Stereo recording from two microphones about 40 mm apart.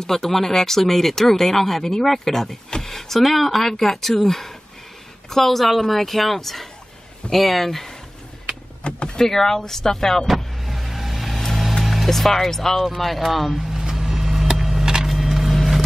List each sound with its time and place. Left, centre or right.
0.0 s a woman's voice: centre
8.8 s power windows: left
9.2 s speech: centre
10.2 s vehicle: centre
12.1 s a woman's voice: centre
13.7 s vehicle: centre
15.0 s a sound: centre